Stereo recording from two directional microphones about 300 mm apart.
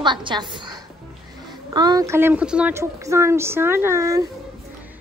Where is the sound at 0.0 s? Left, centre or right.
Centre.